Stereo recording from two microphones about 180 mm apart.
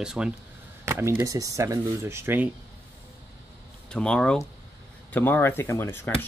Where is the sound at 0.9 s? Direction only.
15° right (ahead or behind).